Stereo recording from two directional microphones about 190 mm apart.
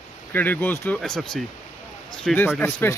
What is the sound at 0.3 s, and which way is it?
Speech, 10° left (ahead or behind).